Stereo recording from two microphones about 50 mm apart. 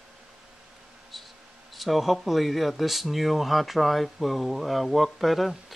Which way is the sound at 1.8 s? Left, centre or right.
Centre.